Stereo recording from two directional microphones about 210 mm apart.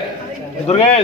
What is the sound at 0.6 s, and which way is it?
Speech, 30° left (ahead or behind).